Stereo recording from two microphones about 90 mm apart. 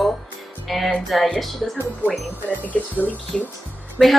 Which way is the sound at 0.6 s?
Centre (ahead or behind).